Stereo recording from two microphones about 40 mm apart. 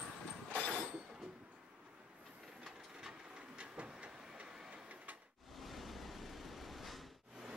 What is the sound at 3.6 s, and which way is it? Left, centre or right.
Train, right.